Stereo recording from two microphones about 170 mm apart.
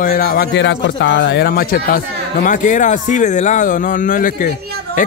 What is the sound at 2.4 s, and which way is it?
A man's voice, 50° left (ahead or behind).